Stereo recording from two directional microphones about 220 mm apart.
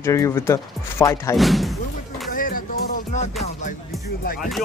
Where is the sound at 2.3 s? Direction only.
40° left (ahead or behind).